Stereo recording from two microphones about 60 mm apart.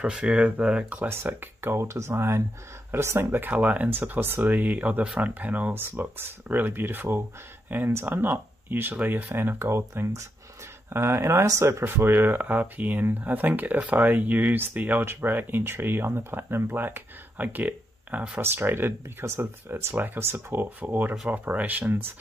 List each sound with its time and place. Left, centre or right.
0.0 s speech: centre
1.0 s speech: right
18.4 s speech: right